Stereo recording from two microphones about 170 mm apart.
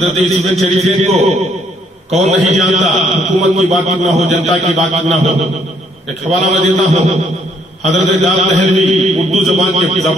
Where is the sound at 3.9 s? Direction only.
45° right (ahead or behind).